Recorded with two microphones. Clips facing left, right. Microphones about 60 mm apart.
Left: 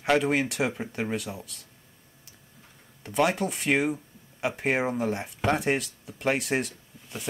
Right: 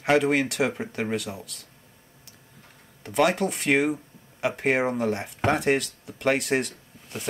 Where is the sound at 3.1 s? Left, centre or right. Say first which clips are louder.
Right 2 dB; centre.